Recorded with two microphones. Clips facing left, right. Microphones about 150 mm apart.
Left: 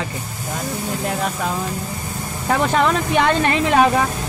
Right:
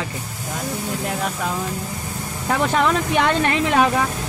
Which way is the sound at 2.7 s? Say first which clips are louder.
Left 1 dB; 5° right (ahead or behind).